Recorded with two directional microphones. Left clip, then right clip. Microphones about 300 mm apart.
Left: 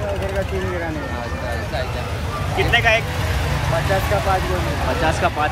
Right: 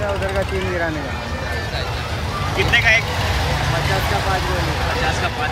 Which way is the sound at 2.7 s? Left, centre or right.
Centre.